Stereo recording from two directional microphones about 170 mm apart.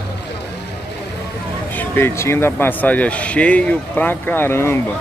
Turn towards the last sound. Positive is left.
turn(degrees=15)  # may be behind; listen again after turning